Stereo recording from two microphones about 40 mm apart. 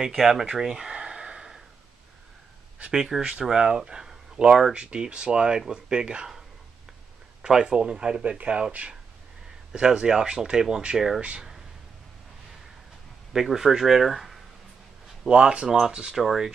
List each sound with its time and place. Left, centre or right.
0.0 s speech: centre
0.5 s a sound: centre
2.9 s speech: centre
7.4 s speech: centre
9.8 s speech: centre
11.1 s speech: right
13.3 s speech: centre
15.2 s speech: right